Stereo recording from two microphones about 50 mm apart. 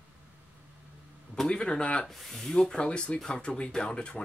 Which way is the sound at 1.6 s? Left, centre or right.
Left.